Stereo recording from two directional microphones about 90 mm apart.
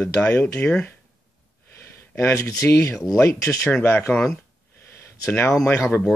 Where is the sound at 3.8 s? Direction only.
30° left (ahead or behind).